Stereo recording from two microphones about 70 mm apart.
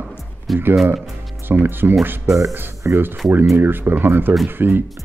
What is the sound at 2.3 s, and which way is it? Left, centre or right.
Speech, right.